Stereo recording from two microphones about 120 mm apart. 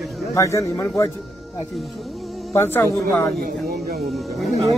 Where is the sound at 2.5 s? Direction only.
15° left (ahead or behind).